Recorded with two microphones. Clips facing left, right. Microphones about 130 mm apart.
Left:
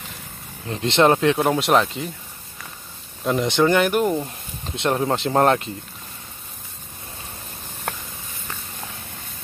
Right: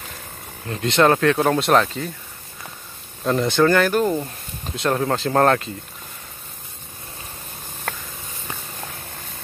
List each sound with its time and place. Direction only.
0.7 s speech: 25° left (ahead or behind)
3.3 s speech: 15° left (ahead or behind)